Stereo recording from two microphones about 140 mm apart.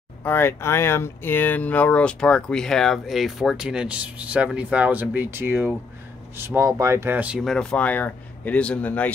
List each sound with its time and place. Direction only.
0.2 s speech: 15° left (ahead or behind); by 7.3 s 10° right (ahead or behind)
7.3 s speech: 5° left (ahead or behind)